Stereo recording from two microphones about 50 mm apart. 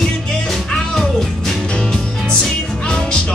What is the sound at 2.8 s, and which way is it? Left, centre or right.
Music, centre.